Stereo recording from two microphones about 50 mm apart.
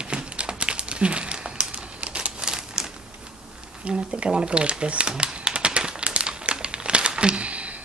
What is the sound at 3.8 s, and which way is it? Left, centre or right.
Typewriter, right.